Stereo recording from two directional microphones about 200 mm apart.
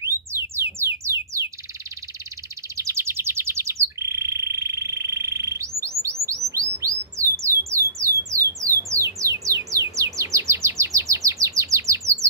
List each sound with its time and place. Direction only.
0.0 s music: 15° right (ahead or behind)
2.8 s bird: 15° right (ahead or behind)
8.3 s a sound: 15° right (ahead or behind)
8.9 s bird: 15° right (ahead or behind)